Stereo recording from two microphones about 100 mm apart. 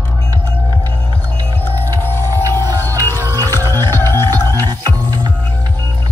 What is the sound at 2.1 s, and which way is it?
Music, 25° left (ahead or behind).